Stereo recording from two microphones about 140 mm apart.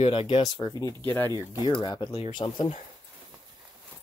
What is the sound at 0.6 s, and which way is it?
Speech, 25° left (ahead or behind).